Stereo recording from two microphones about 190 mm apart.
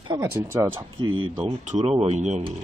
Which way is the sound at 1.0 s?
90° right.